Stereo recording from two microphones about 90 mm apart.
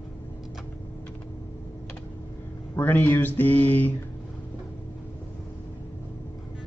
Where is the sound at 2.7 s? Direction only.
20° left (ahead or behind).